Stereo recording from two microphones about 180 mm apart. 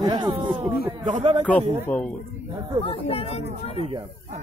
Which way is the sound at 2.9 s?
30° left (ahead or behind).